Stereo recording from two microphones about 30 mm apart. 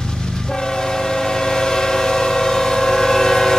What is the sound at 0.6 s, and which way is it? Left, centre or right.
Train, centre.